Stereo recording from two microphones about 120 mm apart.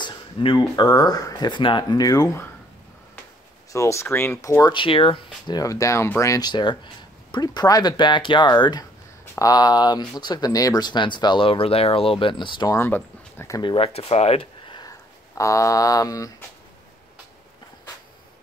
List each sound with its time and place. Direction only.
0.0 s speech: 40° left (ahead or behind)
3.7 s speech: 25° left (ahead or behind)
4.7 s speech: 45° left (ahead or behind)
5.6 s speech: 25° left (ahead or behind)
6.5 s speech: 40° left (ahead or behind)
9.2 s speech: 25° left (ahead or behind)
12.7 s speech: 20° left (ahead or behind)
13.6 s speech: 50° left (ahead or behind)
14.7 s a sound: 35° left (ahead or behind)